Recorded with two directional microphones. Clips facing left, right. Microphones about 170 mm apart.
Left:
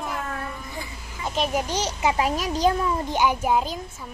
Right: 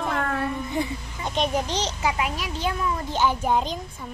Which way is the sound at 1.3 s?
5° left (ahead or behind).